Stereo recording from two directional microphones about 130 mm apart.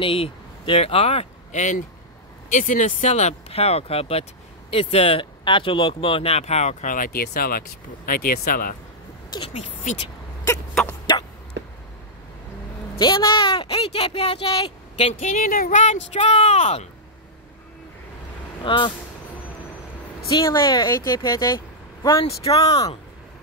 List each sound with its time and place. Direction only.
0.0 s speech: 45° left (ahead or behind)
1.5 s speech: 70° left (ahead or behind)
2.5 s speech: 85° left
9.5 s speech: 70° left (ahead or behind)
13.0 s speech: 35° left (ahead or behind)
15.0 s speech: 65° left (ahead or behind)
18.6 s speech: 40° left (ahead or behind)
20.2 s speech: 30° left (ahead or behind)
22.0 s speech: 40° left (ahead or behind)
22.6 s speech: 30° left (ahead or behind)